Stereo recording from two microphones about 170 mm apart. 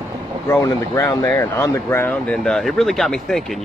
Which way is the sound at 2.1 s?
5° left (ahead or behind).